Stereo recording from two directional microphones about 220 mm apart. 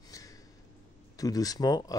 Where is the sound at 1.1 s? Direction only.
15° left (ahead or behind).